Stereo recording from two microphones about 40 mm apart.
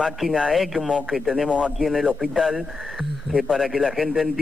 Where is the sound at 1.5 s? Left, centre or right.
Right.